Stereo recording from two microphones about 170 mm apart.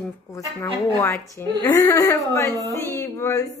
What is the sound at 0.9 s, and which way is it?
A woman's voice, 15° left (ahead or behind).